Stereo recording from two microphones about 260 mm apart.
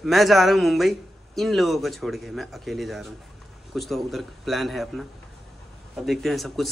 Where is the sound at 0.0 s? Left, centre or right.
Centre.